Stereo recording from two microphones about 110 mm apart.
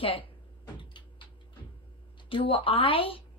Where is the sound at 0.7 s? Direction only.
50° left (ahead or behind).